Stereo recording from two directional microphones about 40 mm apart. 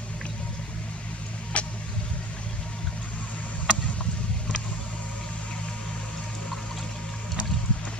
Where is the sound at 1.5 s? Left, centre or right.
Left.